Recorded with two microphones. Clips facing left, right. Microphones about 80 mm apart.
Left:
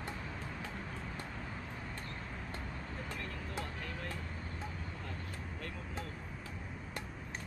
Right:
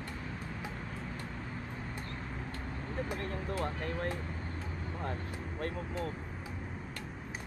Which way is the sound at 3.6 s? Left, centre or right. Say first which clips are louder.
Right 8 dB; right.